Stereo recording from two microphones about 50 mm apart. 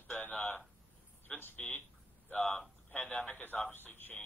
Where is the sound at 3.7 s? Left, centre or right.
Left.